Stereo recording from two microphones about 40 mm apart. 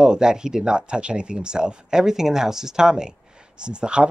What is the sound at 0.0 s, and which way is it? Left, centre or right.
Speech, centre.